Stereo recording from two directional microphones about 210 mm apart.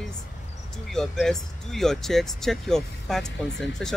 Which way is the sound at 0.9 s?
Centre (ahead or behind).